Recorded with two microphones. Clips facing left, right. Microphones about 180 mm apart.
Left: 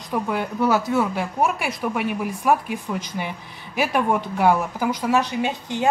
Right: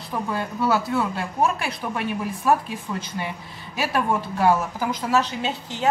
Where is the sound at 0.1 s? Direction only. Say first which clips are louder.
Left 3 dB; 15° left (ahead or behind).